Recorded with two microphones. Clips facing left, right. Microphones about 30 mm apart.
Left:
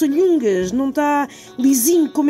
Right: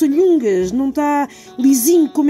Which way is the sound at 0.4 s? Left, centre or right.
Left.